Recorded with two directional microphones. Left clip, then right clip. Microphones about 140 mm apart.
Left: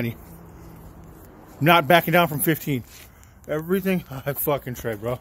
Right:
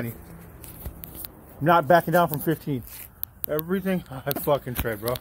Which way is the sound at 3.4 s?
35° left (ahead or behind).